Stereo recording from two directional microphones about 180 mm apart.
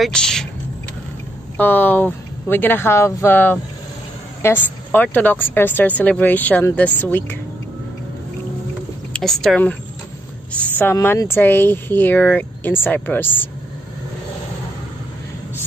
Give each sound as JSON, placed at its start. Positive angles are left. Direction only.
{"t": 0.0, "sound": "speech", "side_deg": 5}
{"t": 1.6, "sound": "speech", "side_deg": 10}
{"t": 9.1, "sound": "speech", "side_deg": 0}